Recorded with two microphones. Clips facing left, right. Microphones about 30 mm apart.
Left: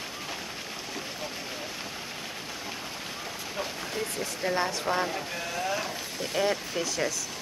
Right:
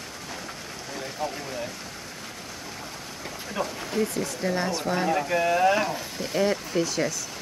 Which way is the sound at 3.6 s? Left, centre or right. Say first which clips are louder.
Right 6 dB; centre.